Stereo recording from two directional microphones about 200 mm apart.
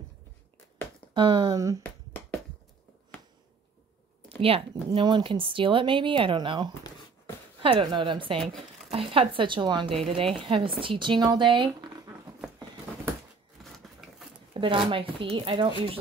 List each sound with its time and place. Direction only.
1.1 s speech: 25° right (ahead or behind)
4.4 s speech: 30° right (ahead or behind)
14.5 s speech: 25° right (ahead or behind)